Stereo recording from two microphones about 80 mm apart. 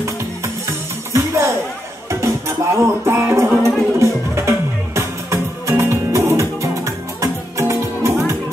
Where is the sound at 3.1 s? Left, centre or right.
Right.